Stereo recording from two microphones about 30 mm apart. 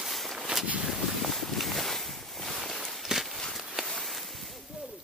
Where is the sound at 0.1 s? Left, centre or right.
Centre.